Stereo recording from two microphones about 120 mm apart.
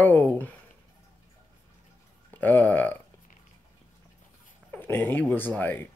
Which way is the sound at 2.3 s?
15° left (ahead or behind).